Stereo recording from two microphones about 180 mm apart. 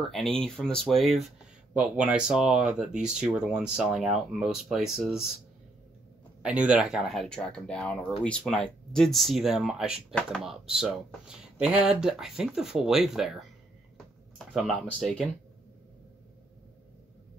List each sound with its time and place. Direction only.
0.0 s speech: centre (ahead or behind)
6.4 s speech: 5° right (ahead or behind)
14.5 s speech: centre (ahead or behind)